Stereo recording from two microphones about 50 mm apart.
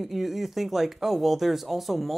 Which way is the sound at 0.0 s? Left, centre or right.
Centre.